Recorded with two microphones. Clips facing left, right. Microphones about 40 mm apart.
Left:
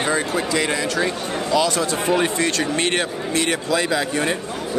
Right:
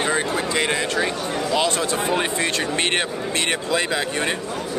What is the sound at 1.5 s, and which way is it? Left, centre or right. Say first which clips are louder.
A man's voice: left 3 dB; right.